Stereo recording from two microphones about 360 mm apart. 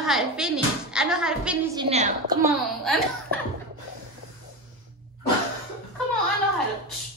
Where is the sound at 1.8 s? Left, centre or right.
Centre.